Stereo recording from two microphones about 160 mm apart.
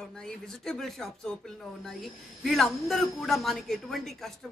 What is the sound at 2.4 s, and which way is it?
A man's voice, centre (ahead or behind).